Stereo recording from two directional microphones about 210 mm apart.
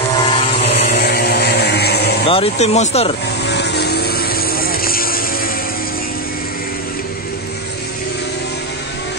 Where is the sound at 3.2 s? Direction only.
55° left (ahead or behind).